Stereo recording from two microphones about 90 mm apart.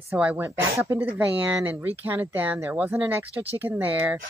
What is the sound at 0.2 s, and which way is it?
Speech, 20° right (ahead or behind).